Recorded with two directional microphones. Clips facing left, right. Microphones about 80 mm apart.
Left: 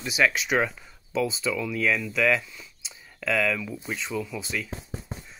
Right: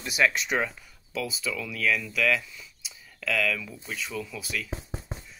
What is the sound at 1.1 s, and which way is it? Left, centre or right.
Speech, left.